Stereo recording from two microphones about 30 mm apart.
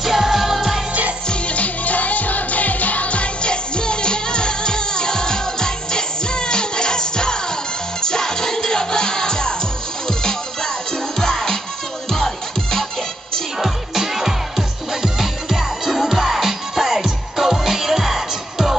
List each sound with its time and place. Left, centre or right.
0.0 s music: centre
1.3 s music: left
3.4 s music: left
13.6 s music: centre